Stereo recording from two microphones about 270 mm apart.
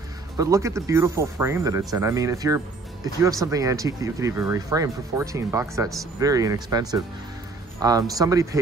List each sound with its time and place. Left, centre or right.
0.4 s speech: centre